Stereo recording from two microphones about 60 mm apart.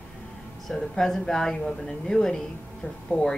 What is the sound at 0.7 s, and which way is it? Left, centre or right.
A woman's voice, centre.